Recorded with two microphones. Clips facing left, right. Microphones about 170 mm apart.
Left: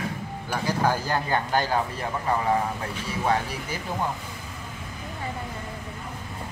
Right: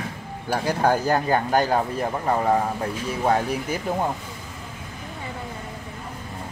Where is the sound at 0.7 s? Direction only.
45° right (ahead or behind).